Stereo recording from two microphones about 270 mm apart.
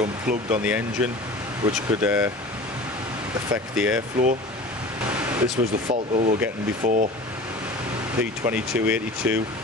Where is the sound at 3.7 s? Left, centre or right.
Centre.